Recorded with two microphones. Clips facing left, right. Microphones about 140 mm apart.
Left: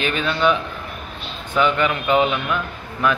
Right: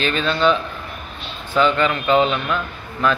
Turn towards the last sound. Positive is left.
turn(degrees=15)  # may be behind; listen again after turning